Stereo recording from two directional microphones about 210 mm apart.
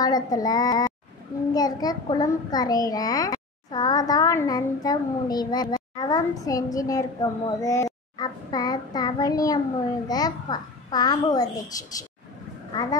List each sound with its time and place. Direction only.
0.0 s a child's voice: 15° left (ahead or behind)